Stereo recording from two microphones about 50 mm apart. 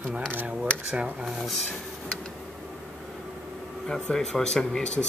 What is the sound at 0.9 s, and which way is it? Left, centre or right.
Speech, right.